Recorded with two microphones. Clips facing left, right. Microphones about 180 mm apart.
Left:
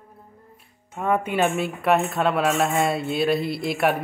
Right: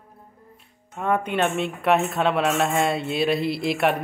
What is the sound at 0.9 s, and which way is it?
Speech, 5° left (ahead or behind).